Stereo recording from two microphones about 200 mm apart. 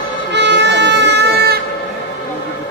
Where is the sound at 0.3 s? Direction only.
60° right (ahead or behind).